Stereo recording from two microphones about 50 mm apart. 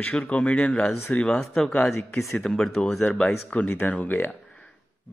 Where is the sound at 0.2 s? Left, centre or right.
Left.